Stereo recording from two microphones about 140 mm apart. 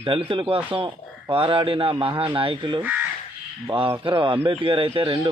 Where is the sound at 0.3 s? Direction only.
40° right (ahead or behind).